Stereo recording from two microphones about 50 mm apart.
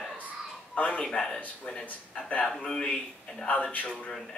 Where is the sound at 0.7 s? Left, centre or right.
Left.